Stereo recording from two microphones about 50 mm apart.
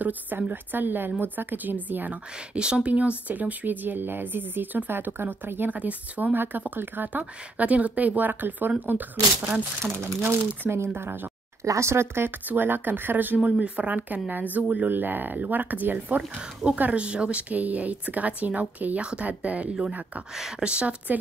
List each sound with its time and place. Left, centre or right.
0.0 s speech: right
2.5 s speech: right
5.8 s speech: right
6.3 s speech: right
10.0 s speech: right
11.6 s speech: right
12.4 s speech: right
13.4 s speech: right
14.9 s speech: right
16.9 s speech: right